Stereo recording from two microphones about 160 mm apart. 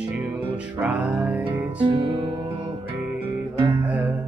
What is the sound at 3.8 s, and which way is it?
Music, 10° right (ahead or behind).